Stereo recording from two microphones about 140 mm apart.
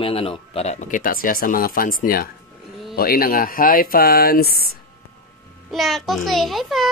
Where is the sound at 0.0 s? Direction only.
40° left (ahead or behind); by 4.7 s 90° left.